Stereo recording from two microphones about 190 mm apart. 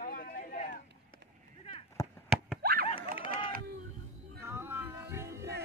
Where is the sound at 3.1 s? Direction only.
30° left (ahead or behind).